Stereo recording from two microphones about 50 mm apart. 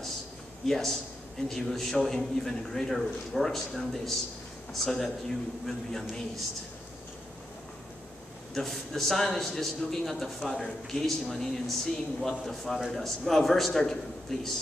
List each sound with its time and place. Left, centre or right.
0.7 s a man's voice: centre
8.5 s a man's voice: centre